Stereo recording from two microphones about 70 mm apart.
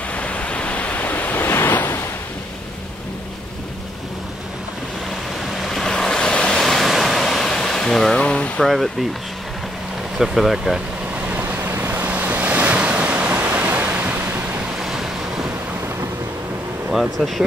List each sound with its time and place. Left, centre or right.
0.1 s waves: centre
5.6 s waves: centre
8.2 s a sound: centre
8.6 s speech: centre
10.1 s speech: centre
11.2 s waves: right
14.8 s waves: centre
16.9 s speech: centre